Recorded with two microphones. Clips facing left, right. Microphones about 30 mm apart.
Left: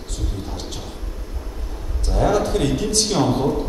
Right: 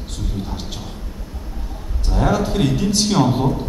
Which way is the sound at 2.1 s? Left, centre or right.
Centre.